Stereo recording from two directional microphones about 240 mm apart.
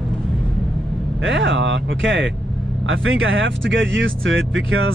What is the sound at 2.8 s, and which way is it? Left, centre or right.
Speech, right.